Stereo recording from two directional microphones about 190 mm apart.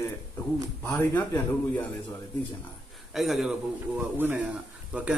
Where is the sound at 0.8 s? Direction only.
10° left (ahead or behind).